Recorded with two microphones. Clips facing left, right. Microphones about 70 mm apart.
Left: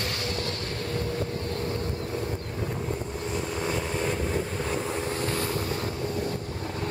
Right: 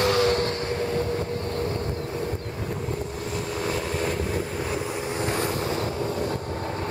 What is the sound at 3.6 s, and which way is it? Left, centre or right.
Vehicle, centre.